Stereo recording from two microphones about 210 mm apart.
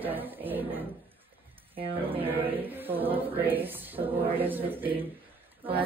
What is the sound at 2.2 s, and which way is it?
Choir, 10° right (ahead or behind).